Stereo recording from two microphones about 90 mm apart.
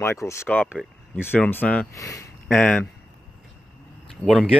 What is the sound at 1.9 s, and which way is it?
Speech, 40° left (ahead or behind).